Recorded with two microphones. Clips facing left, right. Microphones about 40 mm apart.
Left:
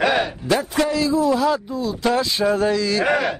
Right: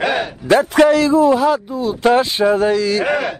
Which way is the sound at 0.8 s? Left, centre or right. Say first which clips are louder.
Right 8 dB; right.